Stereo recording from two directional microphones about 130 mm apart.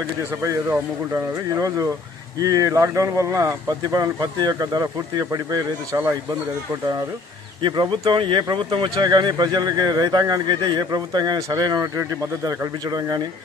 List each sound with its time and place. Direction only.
0.4 s speech: 20° right (ahead or behind)
7.6 s speech: 35° right (ahead or behind)